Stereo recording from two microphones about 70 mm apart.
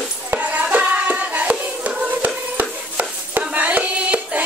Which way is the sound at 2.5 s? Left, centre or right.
Right.